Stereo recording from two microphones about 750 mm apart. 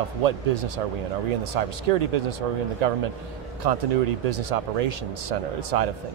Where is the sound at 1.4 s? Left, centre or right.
Right.